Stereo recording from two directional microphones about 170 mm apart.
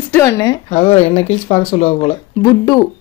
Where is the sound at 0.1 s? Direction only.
15° left (ahead or behind).